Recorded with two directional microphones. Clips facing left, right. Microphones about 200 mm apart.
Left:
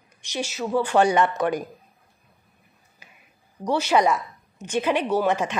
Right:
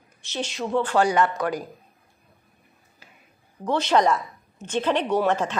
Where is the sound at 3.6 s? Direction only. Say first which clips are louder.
Even; 10° left (ahead or behind).